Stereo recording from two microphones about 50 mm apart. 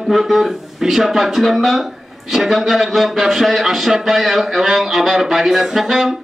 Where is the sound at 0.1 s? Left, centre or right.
Centre.